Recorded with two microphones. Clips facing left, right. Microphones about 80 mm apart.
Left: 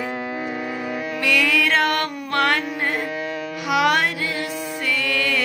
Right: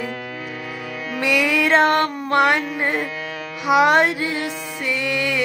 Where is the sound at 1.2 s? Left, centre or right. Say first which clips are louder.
Right 2 dB; right.